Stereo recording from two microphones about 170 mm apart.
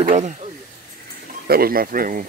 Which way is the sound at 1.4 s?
60° right (ahead or behind).